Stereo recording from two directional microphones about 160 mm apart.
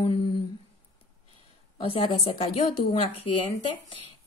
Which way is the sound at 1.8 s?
35° left (ahead or behind).